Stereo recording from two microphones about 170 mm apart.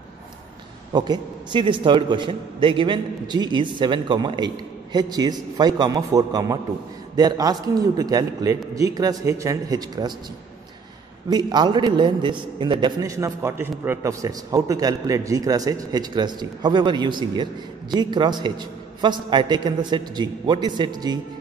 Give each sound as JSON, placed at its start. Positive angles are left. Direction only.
{"t": 0.9, "sound": "a man's voice", "side_deg": -25}
{"t": 11.2, "sound": "a man's voice", "side_deg": -25}